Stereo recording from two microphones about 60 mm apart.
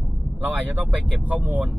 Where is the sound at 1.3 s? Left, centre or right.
Right.